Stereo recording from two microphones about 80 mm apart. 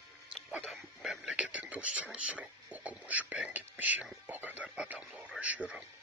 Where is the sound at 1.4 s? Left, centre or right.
Centre.